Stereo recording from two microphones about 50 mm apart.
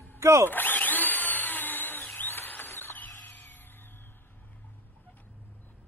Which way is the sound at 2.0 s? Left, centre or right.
Left.